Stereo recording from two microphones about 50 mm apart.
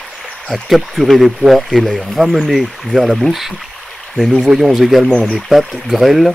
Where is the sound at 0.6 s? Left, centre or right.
Centre.